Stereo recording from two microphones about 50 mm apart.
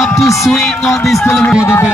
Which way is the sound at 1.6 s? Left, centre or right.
Left.